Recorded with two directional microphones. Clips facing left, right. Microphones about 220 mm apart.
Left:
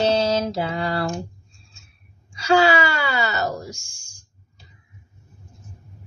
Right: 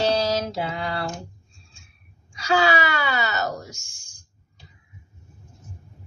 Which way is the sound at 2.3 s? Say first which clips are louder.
Left 4 dB; 30° left (ahead or behind).